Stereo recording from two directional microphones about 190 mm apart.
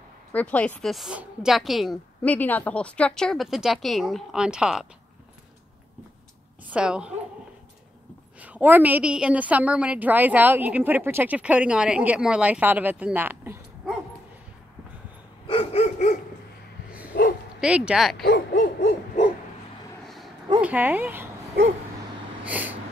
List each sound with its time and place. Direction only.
0.3 s a woman's voice: 10° left (ahead or behind)
6.7 s a woman's voice: 5° right (ahead or behind)
8.4 s a woman's voice: 10° right (ahead or behind)
15.4 s dog: 30° left (ahead or behind)
17.1 s bow-wow: 60° left (ahead or behind)
17.6 s a woman's voice: 5° right (ahead or behind)
18.2 s hoot: 50° left (ahead or behind)
20.6 s a woman's voice: 10° right (ahead or behind)
22.4 s vehicle: 10° right (ahead or behind)